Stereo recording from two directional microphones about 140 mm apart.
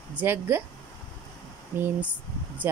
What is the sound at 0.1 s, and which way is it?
Speech, 15° right (ahead or behind).